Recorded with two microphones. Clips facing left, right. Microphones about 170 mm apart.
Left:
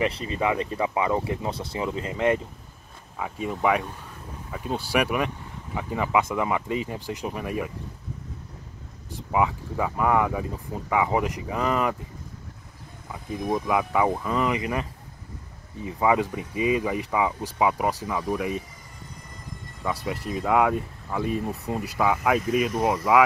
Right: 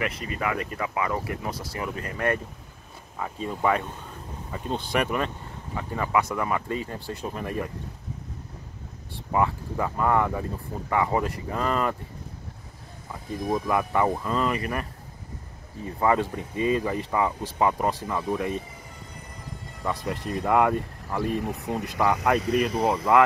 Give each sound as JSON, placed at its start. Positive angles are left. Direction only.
{"t": 0.0, "sound": "speech", "side_deg": 30}
{"t": 3.2, "sound": "speech", "side_deg": 5}
{"t": 9.3, "sound": "speech", "side_deg": 5}
{"t": 13.1, "sound": "speech", "side_deg": 0}
{"t": 19.8, "sound": "speech", "side_deg": 5}